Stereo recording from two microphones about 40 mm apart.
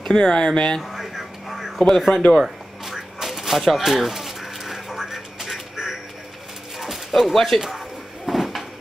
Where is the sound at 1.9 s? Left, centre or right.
Centre.